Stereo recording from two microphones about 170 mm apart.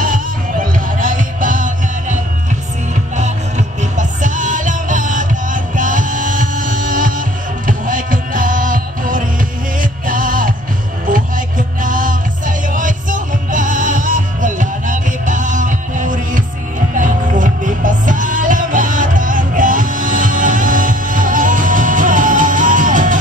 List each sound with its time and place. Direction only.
0.0 s music: 55° right (ahead or behind)
3.2 s music: 45° right (ahead or behind)